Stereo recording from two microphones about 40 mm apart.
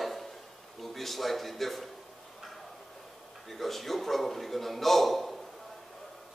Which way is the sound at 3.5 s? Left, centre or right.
Centre.